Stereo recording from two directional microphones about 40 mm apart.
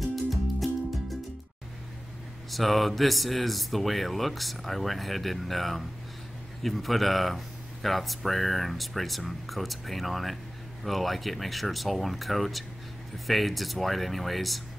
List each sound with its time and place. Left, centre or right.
0.0 s music: centre
2.5 s speech: centre